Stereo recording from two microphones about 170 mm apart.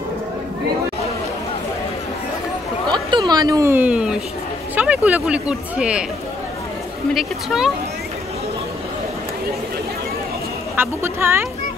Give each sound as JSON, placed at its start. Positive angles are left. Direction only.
{"t": 2.9, "sound": "a sound", "side_deg": -25}
{"t": 4.7, "sound": "speech", "side_deg": -10}
{"t": 7.2, "sound": "speech", "side_deg": 0}
{"t": 10.8, "sound": "speech", "side_deg": -15}